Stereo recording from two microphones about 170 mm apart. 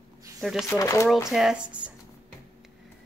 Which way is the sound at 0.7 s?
15° left (ahead or behind).